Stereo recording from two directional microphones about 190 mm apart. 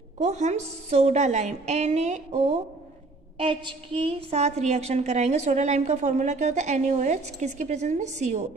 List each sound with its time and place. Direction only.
0.2 s a woman's voice: 35° right (ahead or behind)